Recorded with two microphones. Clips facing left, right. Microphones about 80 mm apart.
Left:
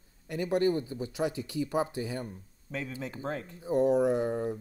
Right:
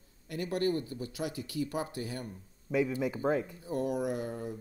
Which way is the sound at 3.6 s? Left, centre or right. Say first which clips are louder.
Left 7 dB; left.